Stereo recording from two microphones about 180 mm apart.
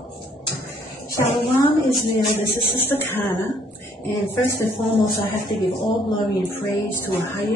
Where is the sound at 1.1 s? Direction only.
20° left (ahead or behind).